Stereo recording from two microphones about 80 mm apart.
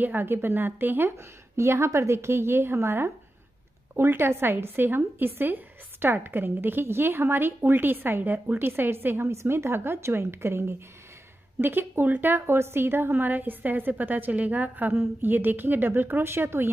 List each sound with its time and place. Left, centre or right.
0.0 s a woman's voice: right